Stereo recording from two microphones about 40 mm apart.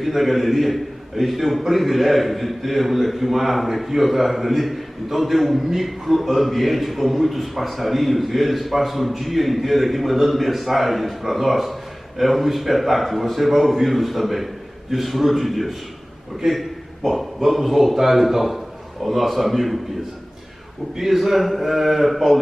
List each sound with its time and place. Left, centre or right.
0.0 s a man's voice: centre
20.9 s a man's voice: centre